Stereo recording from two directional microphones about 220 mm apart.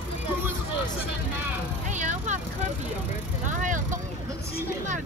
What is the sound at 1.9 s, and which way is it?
Vehicle, 35° right (ahead or behind).